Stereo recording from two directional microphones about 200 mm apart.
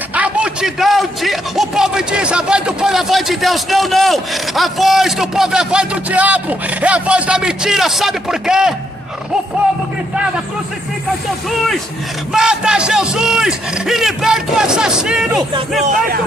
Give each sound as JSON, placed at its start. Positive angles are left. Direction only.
{"t": 0.1, "sound": "a man's voice", "side_deg": -5}
{"t": 12.3, "sound": "a man's voice", "side_deg": -5}
{"t": 15.8, "sound": "speech", "side_deg": -40}